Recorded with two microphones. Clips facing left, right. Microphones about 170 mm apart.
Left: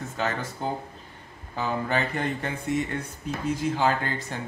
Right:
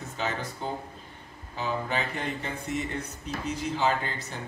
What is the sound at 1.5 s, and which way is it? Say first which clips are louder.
Speech: left 3 dB; 55° left (ahead or behind).